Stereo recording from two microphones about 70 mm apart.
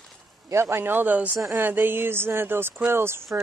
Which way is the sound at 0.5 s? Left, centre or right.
Right.